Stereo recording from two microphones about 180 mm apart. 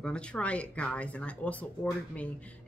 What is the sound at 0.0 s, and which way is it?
A woman's voice, 5° left (ahead or behind).